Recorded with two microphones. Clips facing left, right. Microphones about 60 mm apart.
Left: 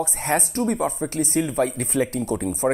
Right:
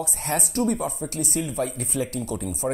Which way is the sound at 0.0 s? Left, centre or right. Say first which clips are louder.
Left 5 dB; left.